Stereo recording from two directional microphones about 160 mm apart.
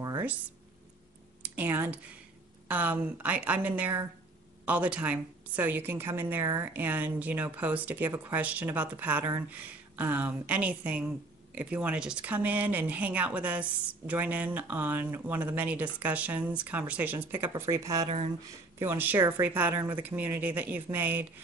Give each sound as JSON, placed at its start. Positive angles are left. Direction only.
{"t": 1.6, "sound": "speech", "side_deg": -10}